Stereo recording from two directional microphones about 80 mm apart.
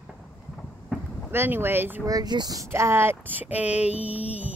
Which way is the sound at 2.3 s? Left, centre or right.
Right.